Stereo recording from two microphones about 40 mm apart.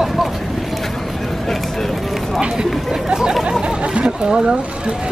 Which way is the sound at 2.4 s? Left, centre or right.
Centre.